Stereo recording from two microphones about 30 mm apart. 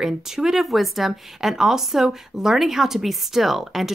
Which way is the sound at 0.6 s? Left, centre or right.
Centre.